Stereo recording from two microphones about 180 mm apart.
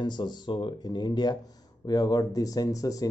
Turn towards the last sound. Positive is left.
turn(degrees=20)  # may be behind; listen again after turning